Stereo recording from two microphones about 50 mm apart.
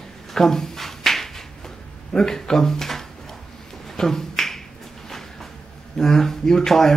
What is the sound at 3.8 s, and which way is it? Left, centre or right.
Beatboxing, centre.